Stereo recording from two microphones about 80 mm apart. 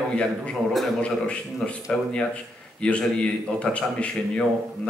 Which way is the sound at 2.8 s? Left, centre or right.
Centre.